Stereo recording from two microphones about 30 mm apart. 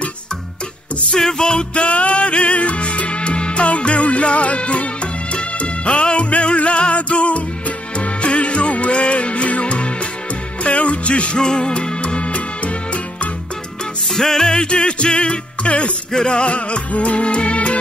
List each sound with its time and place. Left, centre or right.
1.1 s music: left
11.3 s music: left
12.0 s music: left
14.1 s music: centre
14.7 s music: left